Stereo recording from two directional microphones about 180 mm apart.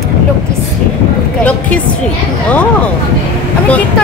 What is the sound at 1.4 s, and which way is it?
Speech, 5° left (ahead or behind).